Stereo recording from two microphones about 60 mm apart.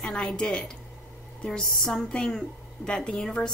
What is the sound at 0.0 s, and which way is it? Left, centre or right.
A woman's voice, centre.